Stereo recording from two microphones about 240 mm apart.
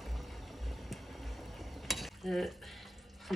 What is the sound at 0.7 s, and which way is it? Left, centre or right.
Stir, centre.